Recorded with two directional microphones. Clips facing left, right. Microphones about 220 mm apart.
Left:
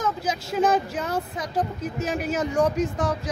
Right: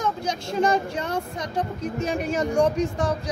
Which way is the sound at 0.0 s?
5° left (ahead or behind).